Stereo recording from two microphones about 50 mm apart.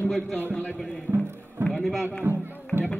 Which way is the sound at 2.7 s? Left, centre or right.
Right.